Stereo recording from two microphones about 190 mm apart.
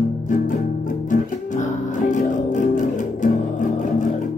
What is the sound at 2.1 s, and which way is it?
Music, 40° left (ahead or behind).